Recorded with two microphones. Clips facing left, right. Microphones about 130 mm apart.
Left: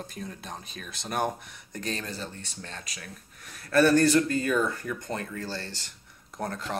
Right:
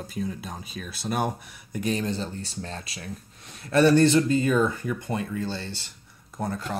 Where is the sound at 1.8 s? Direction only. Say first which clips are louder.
Right 7 dB; 15° right (ahead or behind).